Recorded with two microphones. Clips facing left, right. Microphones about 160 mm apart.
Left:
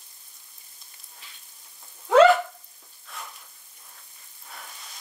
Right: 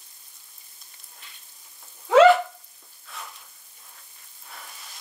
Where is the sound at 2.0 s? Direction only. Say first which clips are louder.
Right 1 dB; centre (ahead or behind).